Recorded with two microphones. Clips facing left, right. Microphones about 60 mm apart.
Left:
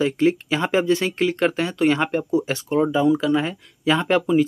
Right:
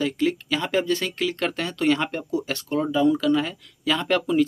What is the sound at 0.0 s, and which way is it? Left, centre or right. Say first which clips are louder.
Speech: left 5 dB; left.